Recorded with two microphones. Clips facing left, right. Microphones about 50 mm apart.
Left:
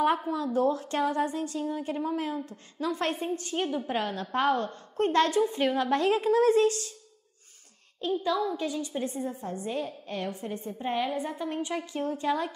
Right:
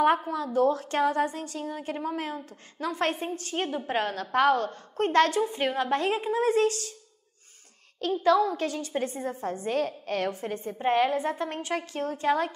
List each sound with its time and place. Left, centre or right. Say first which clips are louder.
0.6 s a woman's voice: right 4 dB; right
4.2 s a woman's voice: right 4 dB; right
5.4 s a woman's voice: left 1 dB; right
6.5 s a woman's voice: left 1 dB; right
8.1 s a woman's voice: right 5 dB; right
8.9 s a woman's voice: right 2 dB; right
10.4 s a woman's voice: right 4 dB; right